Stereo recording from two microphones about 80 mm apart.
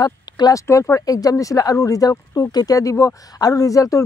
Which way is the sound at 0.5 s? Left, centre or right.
Left.